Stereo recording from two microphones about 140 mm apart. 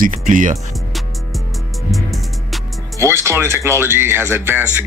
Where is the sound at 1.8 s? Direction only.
Centre (ahead or behind).